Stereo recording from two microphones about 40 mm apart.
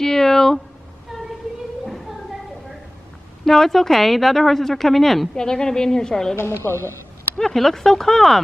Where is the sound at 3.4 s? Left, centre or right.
Centre.